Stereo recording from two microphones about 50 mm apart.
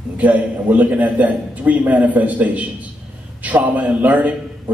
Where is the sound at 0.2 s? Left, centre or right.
Right.